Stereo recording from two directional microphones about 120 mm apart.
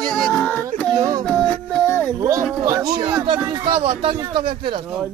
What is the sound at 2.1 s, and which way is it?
Speech, 25° right (ahead or behind).